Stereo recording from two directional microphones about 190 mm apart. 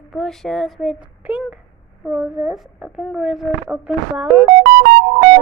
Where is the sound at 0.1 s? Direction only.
Centre (ahead or behind).